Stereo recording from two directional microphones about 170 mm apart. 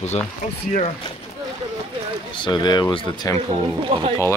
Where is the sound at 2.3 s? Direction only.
25° left (ahead or behind).